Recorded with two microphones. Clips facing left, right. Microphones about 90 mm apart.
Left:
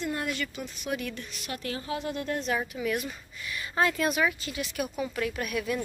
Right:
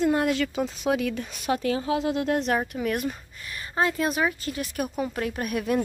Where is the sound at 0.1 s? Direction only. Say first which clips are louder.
Right 9 dB; 90° right.